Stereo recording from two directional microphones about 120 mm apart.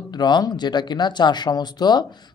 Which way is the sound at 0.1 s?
35° left (ahead or behind).